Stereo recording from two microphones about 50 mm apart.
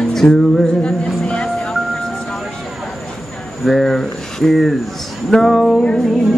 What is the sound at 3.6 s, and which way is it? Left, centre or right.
Music, centre.